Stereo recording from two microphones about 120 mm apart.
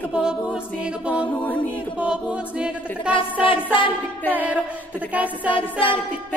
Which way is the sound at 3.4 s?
45° left (ahead or behind).